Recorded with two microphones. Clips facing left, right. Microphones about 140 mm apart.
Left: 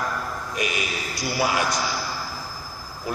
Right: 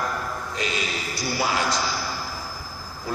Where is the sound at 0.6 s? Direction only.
15° left (ahead or behind).